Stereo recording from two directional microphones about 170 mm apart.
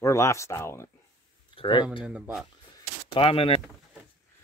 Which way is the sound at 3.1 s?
30° left (ahead or behind).